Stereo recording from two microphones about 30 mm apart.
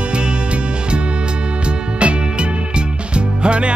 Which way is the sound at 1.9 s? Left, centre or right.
Right.